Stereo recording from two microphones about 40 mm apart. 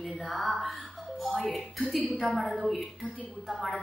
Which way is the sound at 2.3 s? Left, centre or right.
Centre.